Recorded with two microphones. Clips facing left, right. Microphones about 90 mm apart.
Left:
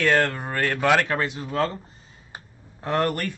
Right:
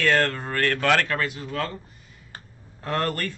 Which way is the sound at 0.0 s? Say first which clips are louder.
Left 1 dB; 15° left (ahead or behind).